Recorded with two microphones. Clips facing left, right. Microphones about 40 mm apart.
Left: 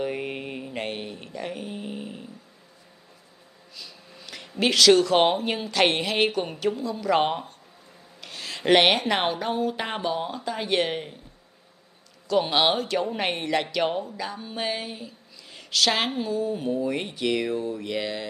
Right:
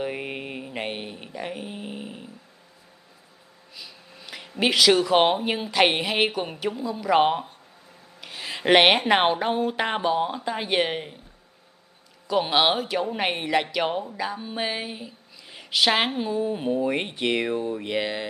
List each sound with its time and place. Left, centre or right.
0.0 s mantra: centre
3.7 s speech: centre
12.3 s speech: centre